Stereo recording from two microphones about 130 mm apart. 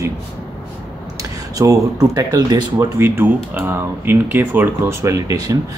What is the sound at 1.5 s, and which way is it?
Speech, 25° right (ahead or behind).